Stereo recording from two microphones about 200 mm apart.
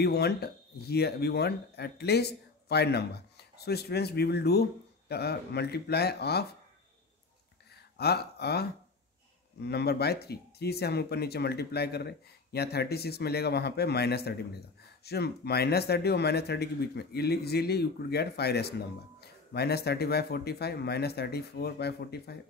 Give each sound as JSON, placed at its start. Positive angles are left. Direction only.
{"t": 0.0, "sound": "speech", "side_deg": 55}
{"t": 7.7, "sound": "a sound", "side_deg": 55}
{"t": 9.6, "sound": "speech", "side_deg": 55}